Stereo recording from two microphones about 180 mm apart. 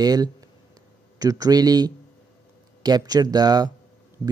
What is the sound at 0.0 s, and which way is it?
Speech, 20° right (ahead or behind).